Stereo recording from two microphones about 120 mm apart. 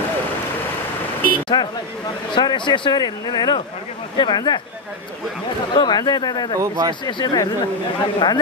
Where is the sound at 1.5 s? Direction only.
35° left (ahead or behind).